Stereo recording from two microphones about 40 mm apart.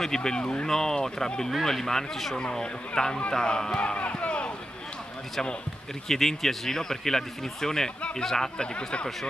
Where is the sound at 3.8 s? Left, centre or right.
Left.